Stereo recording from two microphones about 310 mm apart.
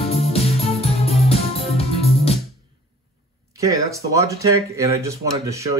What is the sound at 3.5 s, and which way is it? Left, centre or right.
Speech, centre.